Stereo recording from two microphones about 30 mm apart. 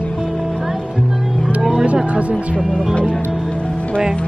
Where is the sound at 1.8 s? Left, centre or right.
Right.